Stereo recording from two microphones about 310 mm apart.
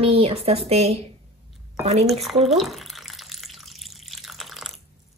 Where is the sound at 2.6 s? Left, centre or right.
Centre.